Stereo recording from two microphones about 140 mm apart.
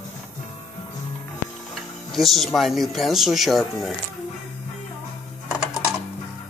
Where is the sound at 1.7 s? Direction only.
Centre (ahead or behind).